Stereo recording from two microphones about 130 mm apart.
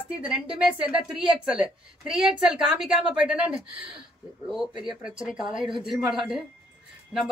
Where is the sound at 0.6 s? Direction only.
5° right (ahead or behind).